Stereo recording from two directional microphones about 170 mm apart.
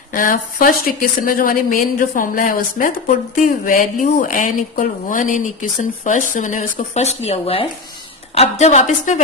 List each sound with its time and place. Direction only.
0.1 s speech: 55° left (ahead or behind)